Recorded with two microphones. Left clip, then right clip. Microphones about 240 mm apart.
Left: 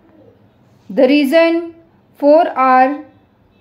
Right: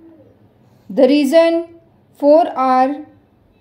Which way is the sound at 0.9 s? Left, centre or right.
Centre.